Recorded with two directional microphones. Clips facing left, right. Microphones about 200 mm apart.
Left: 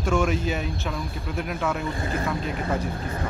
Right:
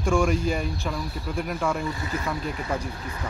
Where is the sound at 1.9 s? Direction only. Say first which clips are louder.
Left 3 dB; 55° left (ahead or behind).